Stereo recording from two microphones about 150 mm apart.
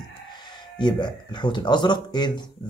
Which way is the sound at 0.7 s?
30° left (ahead or behind).